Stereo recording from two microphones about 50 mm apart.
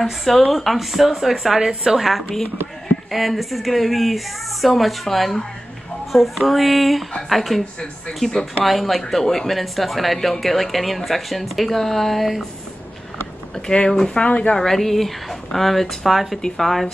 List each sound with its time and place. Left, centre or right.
0.0 s speech: centre
8.6 s speech: centre
13.7 s speech: centre
14.2 s speech: left
14.6 s speech: centre